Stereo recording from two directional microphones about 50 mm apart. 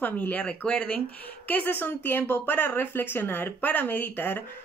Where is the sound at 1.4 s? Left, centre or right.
Left.